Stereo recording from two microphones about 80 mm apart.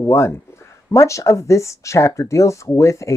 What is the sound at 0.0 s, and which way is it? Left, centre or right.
Speech, left.